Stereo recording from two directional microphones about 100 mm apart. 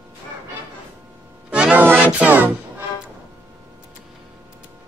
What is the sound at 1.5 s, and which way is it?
Music, 10° right (ahead or behind).